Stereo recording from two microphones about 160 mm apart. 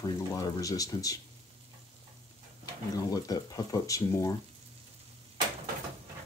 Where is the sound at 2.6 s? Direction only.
25° left (ahead or behind).